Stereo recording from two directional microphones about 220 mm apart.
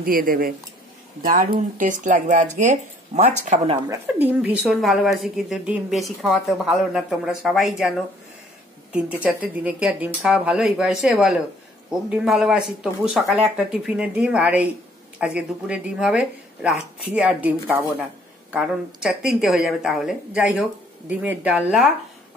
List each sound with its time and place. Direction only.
0.0 s speech: 40° right (ahead or behind)
3.9 s a woman's voice: 10° right (ahead or behind)
8.9 s a woman's voice: 5° right (ahead or behind)